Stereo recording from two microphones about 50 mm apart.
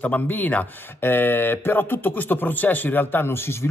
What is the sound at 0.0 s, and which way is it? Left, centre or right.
A man's voice, left.